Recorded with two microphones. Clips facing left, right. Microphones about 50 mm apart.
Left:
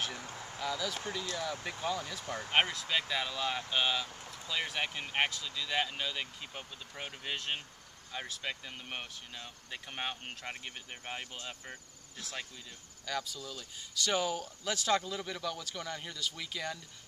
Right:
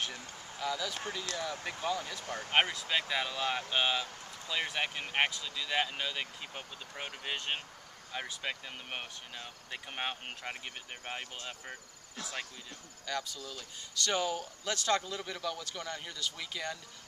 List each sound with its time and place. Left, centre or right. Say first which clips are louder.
0.0 s a sound: left 1 dB; centre
1.4 s speech: even; centre
13.0 s speech: even; centre